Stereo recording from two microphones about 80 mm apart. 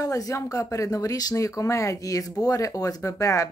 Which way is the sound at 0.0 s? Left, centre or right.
Left.